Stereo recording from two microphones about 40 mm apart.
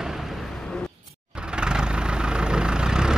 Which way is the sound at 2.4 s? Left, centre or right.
Right.